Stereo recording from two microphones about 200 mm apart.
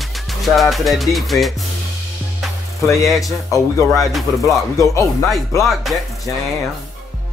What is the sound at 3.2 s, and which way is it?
Music, 15° left (ahead or behind).